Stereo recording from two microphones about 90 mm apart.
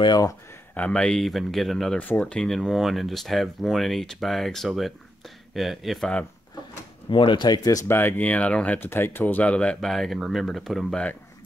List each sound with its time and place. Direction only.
0.0 s speech: 50° left (ahead or behind)
0.7 s speech: 10° left (ahead or behind)
2.0 s speech: 15° left (ahead or behind)
7.1 s speech: 65° left (ahead or behind); by 7.8 s 45° left (ahead or behind)
7.9 s speech: 25° left (ahead or behind)
8.3 s speech: 15° left (ahead or behind)
8.7 s speech: 25° left (ahead or behind); by 11.0 s centre (ahead or behind)